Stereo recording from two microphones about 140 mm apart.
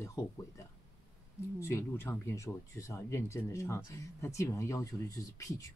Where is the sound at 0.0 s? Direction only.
20° left (ahead or behind).